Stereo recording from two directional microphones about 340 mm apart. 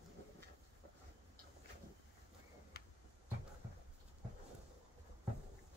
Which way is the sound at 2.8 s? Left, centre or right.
Left.